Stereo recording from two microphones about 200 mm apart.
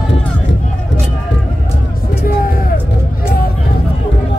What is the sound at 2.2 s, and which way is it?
Music, 45° left (ahead or behind).